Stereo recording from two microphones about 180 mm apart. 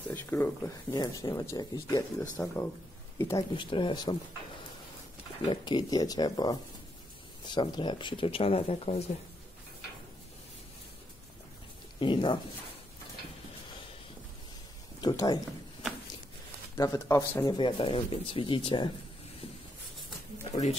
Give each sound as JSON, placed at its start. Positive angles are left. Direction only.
{"t": 0.1, "sound": "speech", "side_deg": 15}
{"t": 3.5, "sound": "speech", "side_deg": 25}
{"t": 5.4, "sound": "speech", "side_deg": 25}
{"t": 12.0, "sound": "speech", "side_deg": 25}
{"t": 15.0, "sound": "speech", "side_deg": 25}
{"t": 16.7, "sound": "speech", "side_deg": 20}
{"t": 17.6, "sound": "speech", "side_deg": 30}